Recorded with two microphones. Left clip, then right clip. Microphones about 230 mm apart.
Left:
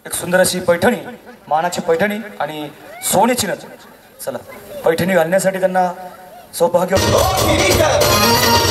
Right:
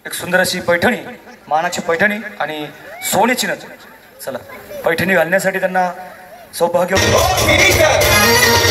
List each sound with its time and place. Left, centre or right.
0.0 s a man's voice: left